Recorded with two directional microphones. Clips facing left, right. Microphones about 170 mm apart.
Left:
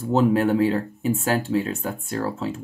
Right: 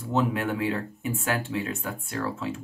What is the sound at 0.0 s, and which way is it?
Speech, 35° left (ahead or behind).